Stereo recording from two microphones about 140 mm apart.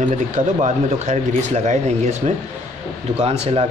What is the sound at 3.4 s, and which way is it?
Speech, 45° right (ahead or behind).